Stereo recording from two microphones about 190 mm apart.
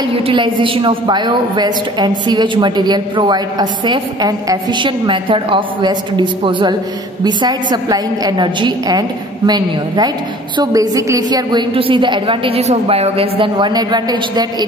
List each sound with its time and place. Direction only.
0.3 s a woman's voice: 25° right (ahead or behind)